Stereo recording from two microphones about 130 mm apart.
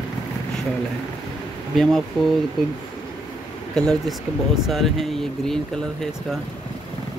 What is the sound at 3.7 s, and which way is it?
Speech, 5° left (ahead or behind).